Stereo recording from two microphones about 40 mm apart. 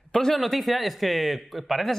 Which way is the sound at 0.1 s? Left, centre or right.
Centre.